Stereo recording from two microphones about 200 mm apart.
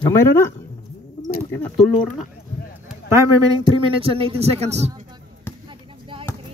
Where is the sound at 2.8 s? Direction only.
15° right (ahead or behind); by 4.9 s 30° right (ahead or behind).